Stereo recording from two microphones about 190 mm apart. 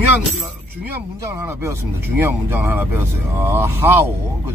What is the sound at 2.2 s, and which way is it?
Speech, 10° right (ahead or behind).